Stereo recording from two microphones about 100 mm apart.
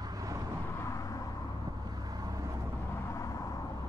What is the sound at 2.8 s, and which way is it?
Vehicle, 25° left (ahead or behind).